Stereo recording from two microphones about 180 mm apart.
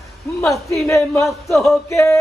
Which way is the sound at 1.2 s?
Centre (ahead or behind).